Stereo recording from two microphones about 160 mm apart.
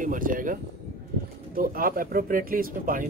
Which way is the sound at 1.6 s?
60° right (ahead or behind).